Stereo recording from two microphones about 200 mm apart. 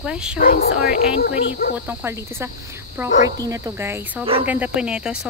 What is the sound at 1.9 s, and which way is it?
Speech, 10° right (ahead or behind).